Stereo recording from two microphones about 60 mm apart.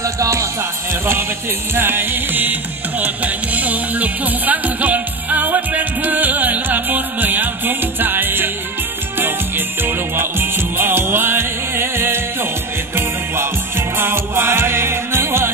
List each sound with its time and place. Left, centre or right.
0.0 s music: right